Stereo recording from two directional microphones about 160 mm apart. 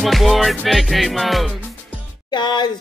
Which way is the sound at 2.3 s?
30° left (ahead or behind).